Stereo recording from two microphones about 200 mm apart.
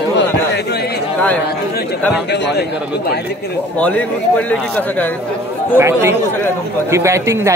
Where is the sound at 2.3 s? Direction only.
60° left (ahead or behind).